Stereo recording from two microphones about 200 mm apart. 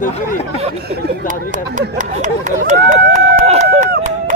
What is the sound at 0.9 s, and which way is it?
Speech, 40° right (ahead or behind).